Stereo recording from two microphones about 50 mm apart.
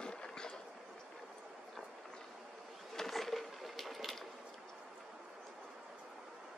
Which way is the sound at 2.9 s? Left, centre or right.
Centre.